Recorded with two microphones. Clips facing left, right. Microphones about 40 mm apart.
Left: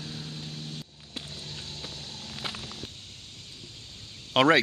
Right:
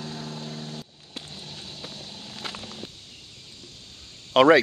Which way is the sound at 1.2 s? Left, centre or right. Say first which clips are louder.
Even; centre.